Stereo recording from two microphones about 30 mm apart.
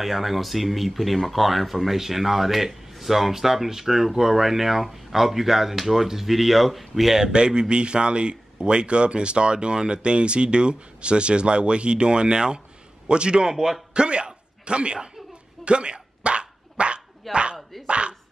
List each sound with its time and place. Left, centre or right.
0.0 s speech: centre
7.3 s a man's voice: right
13.5 s speech: centre
13.9 s speech: right
15.6 s dog: right